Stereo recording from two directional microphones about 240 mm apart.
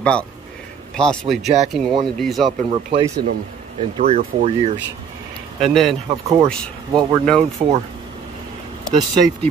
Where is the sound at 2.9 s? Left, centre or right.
Centre.